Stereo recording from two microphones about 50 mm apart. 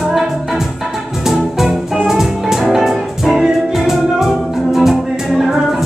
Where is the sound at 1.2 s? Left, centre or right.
Centre.